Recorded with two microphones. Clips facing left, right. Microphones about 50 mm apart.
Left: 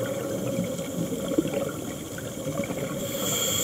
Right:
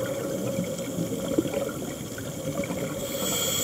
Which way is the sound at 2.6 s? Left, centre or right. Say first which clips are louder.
Even; centre.